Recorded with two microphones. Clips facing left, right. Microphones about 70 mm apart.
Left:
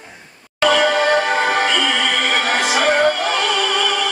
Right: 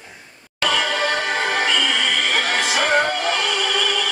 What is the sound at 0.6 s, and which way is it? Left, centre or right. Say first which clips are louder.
Music: left 6 dB; left.